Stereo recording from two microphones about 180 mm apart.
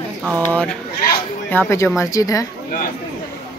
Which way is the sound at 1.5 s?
15° left (ahead or behind).